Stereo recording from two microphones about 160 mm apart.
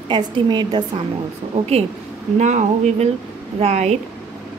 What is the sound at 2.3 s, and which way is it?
A woman's voice, 50° right (ahead or behind).